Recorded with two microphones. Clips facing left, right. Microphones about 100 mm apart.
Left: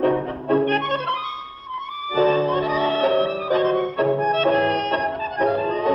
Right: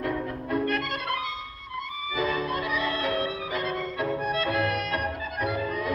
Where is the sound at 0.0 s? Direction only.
40° left (ahead or behind).